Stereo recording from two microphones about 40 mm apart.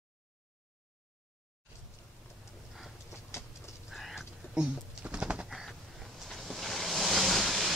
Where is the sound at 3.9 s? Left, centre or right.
Centre.